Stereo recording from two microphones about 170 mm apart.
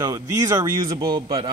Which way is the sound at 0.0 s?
20° right (ahead or behind).